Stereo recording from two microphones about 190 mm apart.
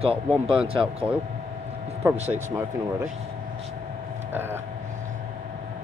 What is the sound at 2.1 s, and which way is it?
Speech, 35° right (ahead or behind).